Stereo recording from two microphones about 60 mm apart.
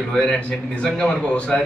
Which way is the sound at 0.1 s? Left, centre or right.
Centre.